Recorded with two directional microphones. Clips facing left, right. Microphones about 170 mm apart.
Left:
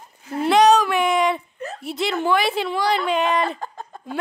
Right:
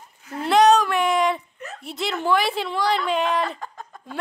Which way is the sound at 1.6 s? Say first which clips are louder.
Left 5 dB; 35° left (ahead or behind).